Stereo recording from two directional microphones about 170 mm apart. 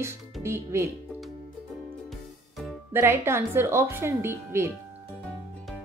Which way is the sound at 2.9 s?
15° right (ahead or behind).